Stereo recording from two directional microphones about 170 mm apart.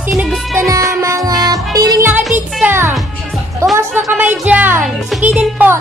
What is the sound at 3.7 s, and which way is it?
Speech, 10° right (ahead or behind).